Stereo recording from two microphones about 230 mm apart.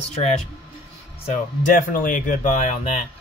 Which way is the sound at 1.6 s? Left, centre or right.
Left.